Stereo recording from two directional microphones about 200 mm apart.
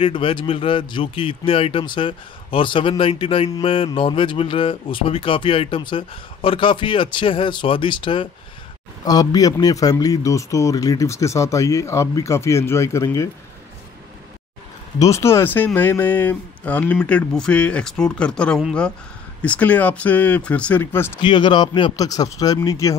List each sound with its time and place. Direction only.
0.0 s speech: 25° left (ahead or behind)
15.0 s speech: 15° left (ahead or behind)
21.2 s speech: 25° left (ahead or behind)